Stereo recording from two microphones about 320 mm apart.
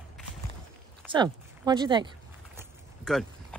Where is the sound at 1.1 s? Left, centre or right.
Centre.